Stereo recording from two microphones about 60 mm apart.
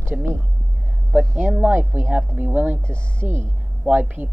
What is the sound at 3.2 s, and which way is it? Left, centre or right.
Speech, centre.